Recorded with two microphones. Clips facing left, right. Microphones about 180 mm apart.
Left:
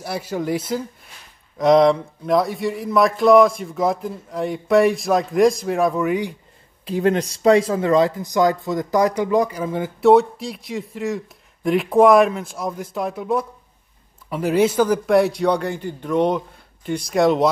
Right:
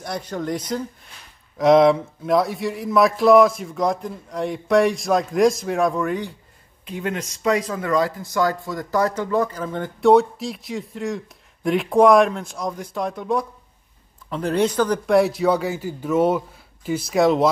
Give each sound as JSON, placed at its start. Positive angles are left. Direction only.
{"t": 0.0, "sound": "speech", "side_deg": 5}
{"t": 6.8, "sound": "speech", "side_deg": 35}